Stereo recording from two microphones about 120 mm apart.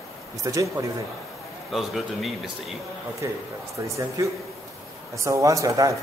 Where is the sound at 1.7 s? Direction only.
Centre (ahead or behind).